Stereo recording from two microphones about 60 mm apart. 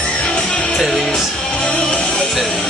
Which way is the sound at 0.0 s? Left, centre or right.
Centre.